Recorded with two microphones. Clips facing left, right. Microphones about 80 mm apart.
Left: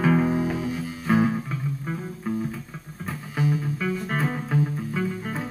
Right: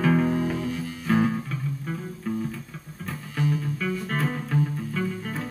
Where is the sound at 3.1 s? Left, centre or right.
Centre.